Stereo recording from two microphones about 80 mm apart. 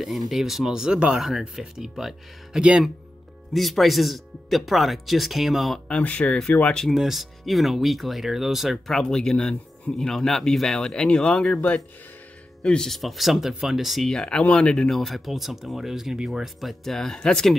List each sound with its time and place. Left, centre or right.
0.3 s speech: centre
3.5 s speech: centre
5.9 s speech: centre
6.9 s speech: centre